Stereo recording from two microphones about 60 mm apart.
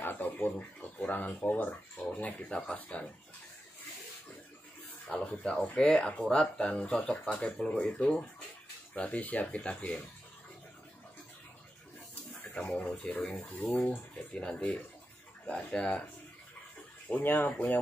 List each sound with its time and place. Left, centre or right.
0.0 s speech: left
2.6 s speech: centre
5.0 s speech: left
12.5 s speech: centre
13.5 s speech: left
17.1 s speech: left